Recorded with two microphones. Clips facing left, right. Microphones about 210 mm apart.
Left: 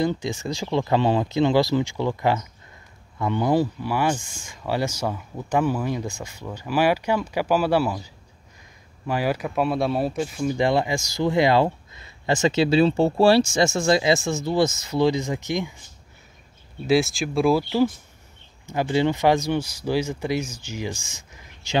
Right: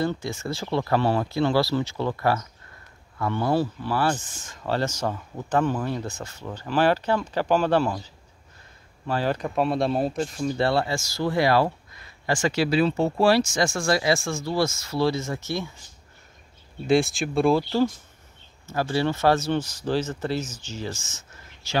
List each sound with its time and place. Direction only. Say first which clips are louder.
0.0 s speech: left 3 dB; 15° left (ahead or behind)
16.8 s speech: left 1 dB; centre (ahead or behind)
18.7 s speech: left 3 dB; 20° left (ahead or behind)